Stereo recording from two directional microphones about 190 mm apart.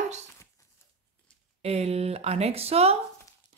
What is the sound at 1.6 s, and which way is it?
Speech, 35° right (ahead or behind).